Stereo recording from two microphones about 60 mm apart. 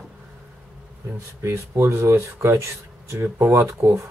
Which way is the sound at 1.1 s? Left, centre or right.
Right.